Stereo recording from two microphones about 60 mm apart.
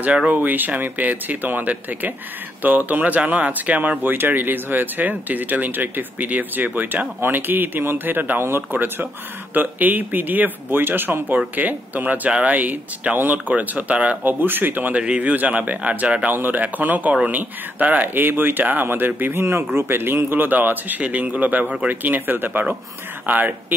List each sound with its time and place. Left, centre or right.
0.3 s speech: right
12.3 s speech: centre
12.5 s speech: right
19.4 s speech: right